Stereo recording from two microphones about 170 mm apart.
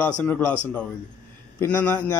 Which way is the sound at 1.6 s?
10° left (ahead or behind).